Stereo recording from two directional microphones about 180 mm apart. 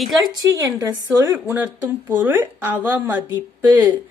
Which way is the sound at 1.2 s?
10° right (ahead or behind).